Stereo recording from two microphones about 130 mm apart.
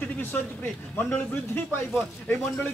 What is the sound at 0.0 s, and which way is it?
A man's voice, 15° left (ahead or behind).